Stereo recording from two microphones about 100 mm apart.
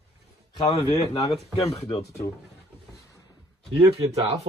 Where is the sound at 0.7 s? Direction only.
40° left (ahead or behind).